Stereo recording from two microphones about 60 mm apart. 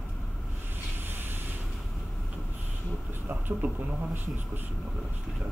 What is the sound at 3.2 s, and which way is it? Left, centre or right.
Speech, right.